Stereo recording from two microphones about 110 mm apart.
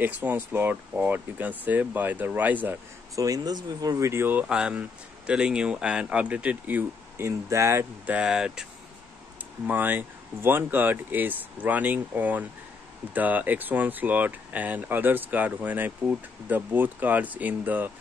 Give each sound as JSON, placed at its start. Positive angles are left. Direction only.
{"t": 0.0, "sound": "speech", "side_deg": -15}
{"t": 3.2, "sound": "speech", "side_deg": -35}
{"t": 4.1, "sound": "speech", "side_deg": -20}
{"t": 8.1, "sound": "speech", "side_deg": -10}
{"t": 9.7, "sound": "speech", "side_deg": -15}